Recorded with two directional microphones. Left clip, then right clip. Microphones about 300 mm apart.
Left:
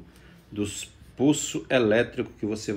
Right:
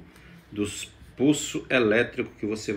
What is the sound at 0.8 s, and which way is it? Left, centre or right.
Speech, left.